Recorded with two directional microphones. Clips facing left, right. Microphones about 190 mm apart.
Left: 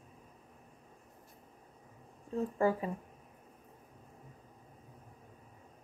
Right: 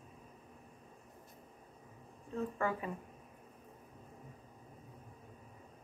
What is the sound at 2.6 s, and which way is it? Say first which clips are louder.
Speech: left 8 dB; 35° left (ahead or behind).